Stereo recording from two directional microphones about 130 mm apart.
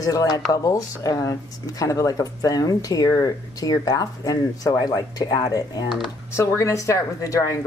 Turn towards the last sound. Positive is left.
turn(degrees=25)  # may be behind; listen again after turning